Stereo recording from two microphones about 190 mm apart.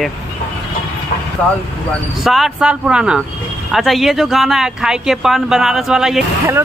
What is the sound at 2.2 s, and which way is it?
Speech, centre (ahead or behind).